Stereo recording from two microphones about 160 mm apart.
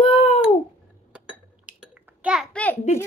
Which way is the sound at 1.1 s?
10° right (ahead or behind).